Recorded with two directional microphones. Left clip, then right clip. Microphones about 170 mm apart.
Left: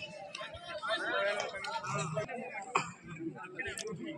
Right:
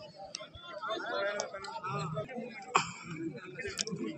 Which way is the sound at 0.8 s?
15° right (ahead or behind).